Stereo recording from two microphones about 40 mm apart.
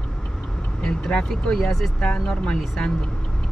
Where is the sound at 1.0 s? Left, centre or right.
Centre.